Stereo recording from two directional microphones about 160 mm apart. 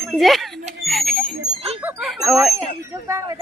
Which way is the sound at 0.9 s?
Centre (ahead or behind).